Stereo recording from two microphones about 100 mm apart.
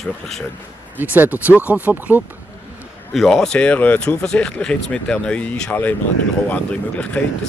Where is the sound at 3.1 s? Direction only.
Centre (ahead or behind).